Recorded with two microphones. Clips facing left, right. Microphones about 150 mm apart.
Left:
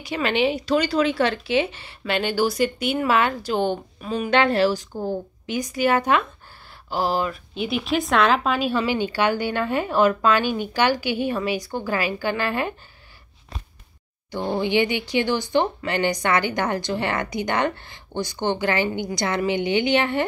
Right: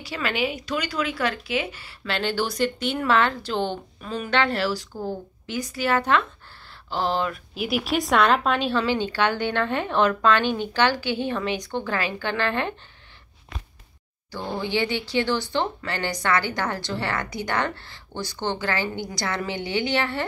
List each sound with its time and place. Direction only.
0.0 s speech: 20° left (ahead or behind)
14.3 s speech: 20° left (ahead or behind)